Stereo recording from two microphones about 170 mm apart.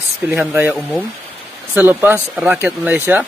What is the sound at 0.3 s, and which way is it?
Speech, 10° right (ahead or behind).